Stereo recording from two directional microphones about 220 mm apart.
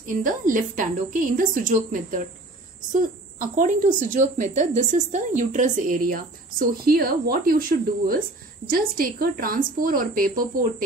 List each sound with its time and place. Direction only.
0.0 s a woman's voice: 35° right (ahead or behind)
8.6 s a woman's voice: 40° right (ahead or behind)